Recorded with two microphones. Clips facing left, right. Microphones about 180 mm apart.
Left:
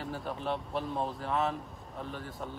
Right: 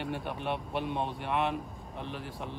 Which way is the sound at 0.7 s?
70° right (ahead or behind).